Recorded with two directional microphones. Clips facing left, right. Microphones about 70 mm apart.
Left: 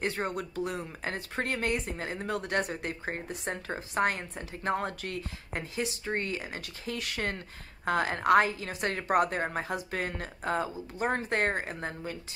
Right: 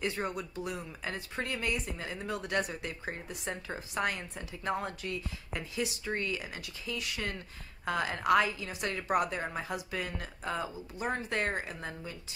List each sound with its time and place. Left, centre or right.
0.0 s speech: left